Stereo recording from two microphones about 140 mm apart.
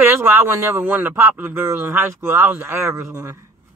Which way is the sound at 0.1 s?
15° right (ahead or behind).